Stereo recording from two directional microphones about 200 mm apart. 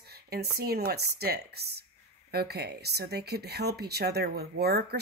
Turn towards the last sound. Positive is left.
turn(degrees=-55)  # may be behind; listen again after turning